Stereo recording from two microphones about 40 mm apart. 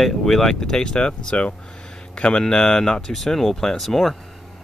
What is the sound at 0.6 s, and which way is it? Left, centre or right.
Speech, left.